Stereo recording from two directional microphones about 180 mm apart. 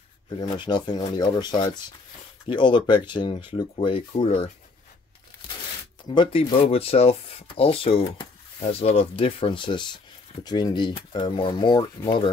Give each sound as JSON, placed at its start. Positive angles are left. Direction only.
{"t": 0.4, "sound": "speech", "side_deg": 25}
{"t": 6.0, "sound": "speech", "side_deg": 30}